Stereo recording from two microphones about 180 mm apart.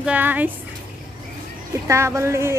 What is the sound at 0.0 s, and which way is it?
Speech, 10° right (ahead or behind).